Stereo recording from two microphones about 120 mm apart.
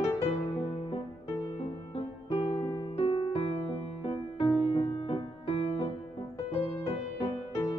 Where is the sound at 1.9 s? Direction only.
55° left (ahead or behind).